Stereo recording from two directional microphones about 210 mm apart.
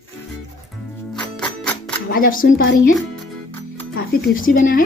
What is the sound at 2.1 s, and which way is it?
Speech, 40° left (ahead or behind).